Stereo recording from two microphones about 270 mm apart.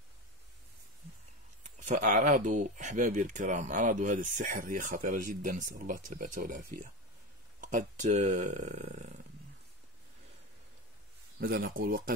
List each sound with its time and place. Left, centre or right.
1.6 s speech: right
11.3 s speech: right